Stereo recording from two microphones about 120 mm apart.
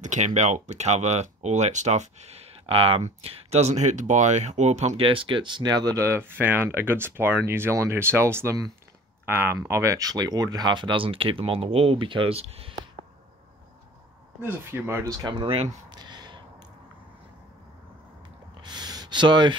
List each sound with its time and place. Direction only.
0.0 s speech: 80° right
5.0 s speech: 45° right (ahead or behind)
14.4 s speech: 20° right (ahead or behind)
15.1 s speech: 40° right (ahead or behind)
15.9 s a sound: 35° right (ahead or behind)
18.6 s a sound: 35° right (ahead or behind)